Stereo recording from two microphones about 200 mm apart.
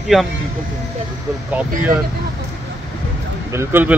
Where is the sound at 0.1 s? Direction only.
Centre (ahead or behind).